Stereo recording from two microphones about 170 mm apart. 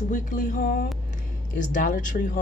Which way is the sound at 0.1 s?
50° left (ahead or behind).